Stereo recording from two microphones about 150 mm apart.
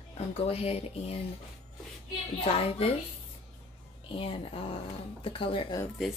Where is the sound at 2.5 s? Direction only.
40° left (ahead or behind).